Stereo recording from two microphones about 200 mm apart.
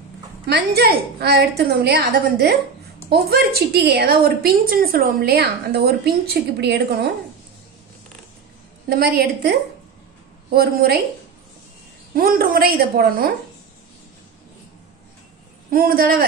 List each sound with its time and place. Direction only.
0.5 s a woman's voice: 55° right (ahead or behind)
8.8 s a woman's voice: 50° right (ahead or behind)
12.1 s a woman's voice: 45° right (ahead or behind)
15.7 s a woman's voice: 45° right (ahead or behind)